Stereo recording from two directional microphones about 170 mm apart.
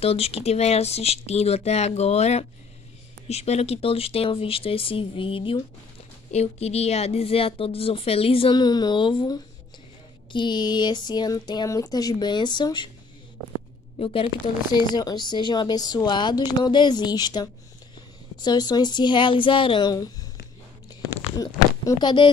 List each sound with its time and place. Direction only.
0.0 s a woman's voice: 35° left (ahead or behind)
13.9 s speech: 30° left (ahead or behind)
20.9 s a sound: 20° left (ahead or behind)